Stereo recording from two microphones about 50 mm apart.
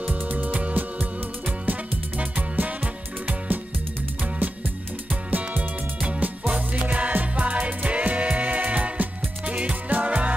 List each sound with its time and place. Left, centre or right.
0.0 s music: right
5.3 s music: right